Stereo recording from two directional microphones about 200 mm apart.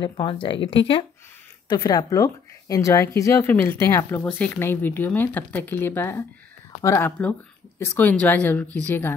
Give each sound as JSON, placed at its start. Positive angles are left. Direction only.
{"t": 0.0, "sound": "speech", "side_deg": 25}